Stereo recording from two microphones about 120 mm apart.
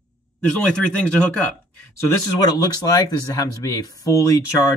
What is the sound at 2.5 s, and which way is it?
Speech, 30° left (ahead or behind).